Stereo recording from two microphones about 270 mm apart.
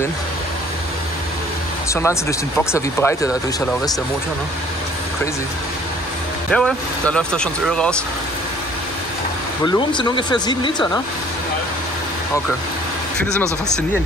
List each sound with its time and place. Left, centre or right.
1.9 s speech: centre
6.5 s speech: centre
9.7 s speech: centre